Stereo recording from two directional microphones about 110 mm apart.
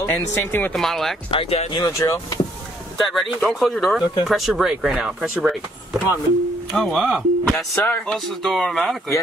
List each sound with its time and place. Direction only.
0.0 s speech: 25° left (ahead or behind)
0.7 s speech: 5° left (ahead or behind)
1.3 s speech: 60° left (ahead or behind)
1.8 s speech: 30° left (ahead or behind)
3.1 s speech: centre (ahead or behind)
6.7 s speech: centre (ahead or behind)
7.7 s speech: 20° left (ahead or behind)
8.1 s speech: centre (ahead or behind)